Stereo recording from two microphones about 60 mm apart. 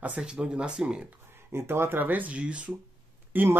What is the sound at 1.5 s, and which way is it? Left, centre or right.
Speech, right.